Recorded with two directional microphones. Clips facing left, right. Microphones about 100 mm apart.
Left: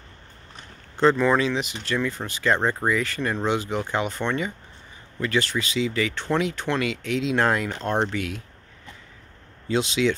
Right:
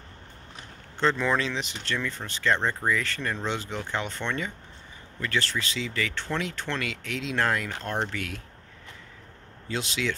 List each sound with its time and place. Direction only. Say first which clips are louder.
0.9 s speech: left 6 dB; 10° left (ahead or behind)
9.7 s speech: left 8 dB; 20° left (ahead or behind)